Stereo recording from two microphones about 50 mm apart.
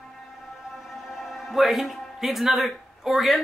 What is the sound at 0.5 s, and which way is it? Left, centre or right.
Music, centre.